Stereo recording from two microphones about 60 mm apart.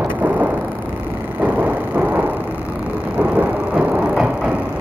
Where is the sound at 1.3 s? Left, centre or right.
Right.